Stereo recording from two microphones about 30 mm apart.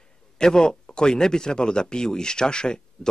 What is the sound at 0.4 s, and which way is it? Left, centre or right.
Speech, left.